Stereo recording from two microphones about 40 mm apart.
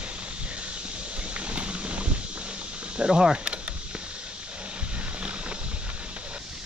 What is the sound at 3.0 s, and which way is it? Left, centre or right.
Speech, centre.